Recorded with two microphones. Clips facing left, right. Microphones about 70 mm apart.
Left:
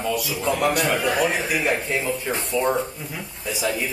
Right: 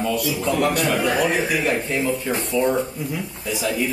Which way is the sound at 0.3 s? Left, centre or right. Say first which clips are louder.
Even; left.